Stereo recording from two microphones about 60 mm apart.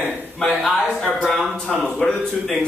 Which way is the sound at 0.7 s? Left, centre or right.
Centre.